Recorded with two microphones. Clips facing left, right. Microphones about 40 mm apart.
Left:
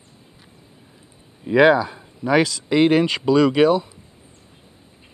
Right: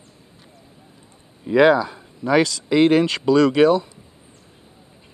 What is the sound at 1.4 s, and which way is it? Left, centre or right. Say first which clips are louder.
Speech: even; centre.